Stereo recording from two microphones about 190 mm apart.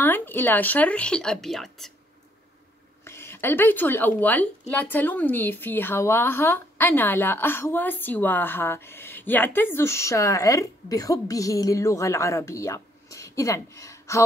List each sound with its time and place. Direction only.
0.0 s a woman's voice: 10° left (ahead or behind)
3.0 s a woman's voice: 15° left (ahead or behind)